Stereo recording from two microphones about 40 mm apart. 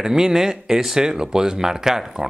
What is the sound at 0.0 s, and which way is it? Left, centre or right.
Speech, centre.